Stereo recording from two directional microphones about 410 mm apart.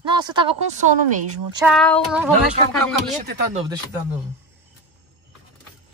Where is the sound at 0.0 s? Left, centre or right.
Centre.